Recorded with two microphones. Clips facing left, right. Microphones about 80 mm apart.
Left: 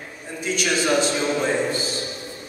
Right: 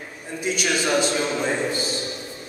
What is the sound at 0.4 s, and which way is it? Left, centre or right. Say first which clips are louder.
A man's voice: left 1 dB; centre.